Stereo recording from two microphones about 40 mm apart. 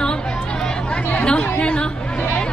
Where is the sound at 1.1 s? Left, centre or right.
Left.